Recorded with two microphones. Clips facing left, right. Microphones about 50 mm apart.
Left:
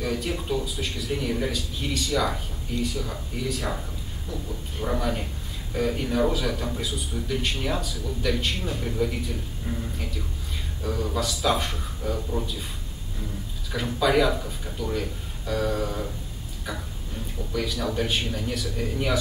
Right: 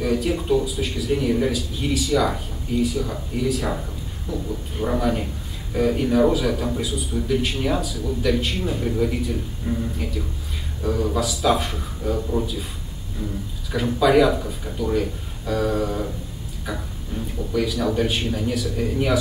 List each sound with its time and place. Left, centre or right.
0.0 s a man's voice: centre
12.2 s speech: centre
13.7 s a man's voice: centre